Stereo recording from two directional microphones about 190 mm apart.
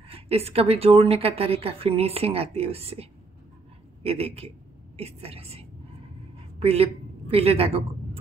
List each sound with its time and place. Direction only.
0.1 s a woman's voice: 30° right (ahead or behind)